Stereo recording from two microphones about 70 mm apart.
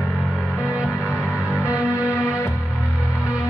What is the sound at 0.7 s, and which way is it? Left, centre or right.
Music, centre.